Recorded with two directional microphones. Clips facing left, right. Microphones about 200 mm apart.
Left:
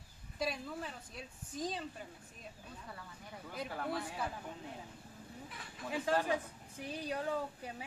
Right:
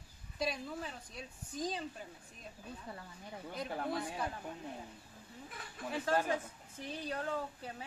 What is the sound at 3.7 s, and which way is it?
Speech, 20° right (ahead or behind).